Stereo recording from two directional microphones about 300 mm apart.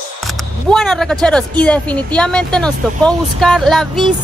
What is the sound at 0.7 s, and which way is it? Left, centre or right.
Speech, centre.